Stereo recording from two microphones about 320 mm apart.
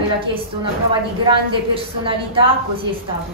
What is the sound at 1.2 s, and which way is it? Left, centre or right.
A woman's voice, centre.